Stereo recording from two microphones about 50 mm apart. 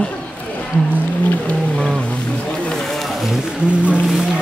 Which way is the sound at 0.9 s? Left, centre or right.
Left.